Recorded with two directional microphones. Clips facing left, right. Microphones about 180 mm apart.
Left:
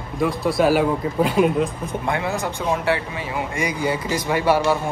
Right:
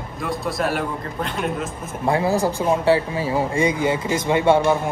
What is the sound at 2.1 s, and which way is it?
Speech, 30° right (ahead or behind).